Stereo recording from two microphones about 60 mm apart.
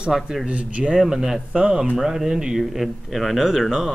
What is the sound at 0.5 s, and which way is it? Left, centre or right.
Speech, right.